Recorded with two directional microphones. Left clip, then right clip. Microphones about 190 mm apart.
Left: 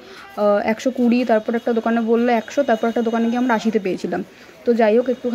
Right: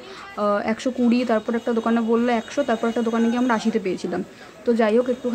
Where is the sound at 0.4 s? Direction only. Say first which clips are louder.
Left 5 dB; 15° left (ahead or behind).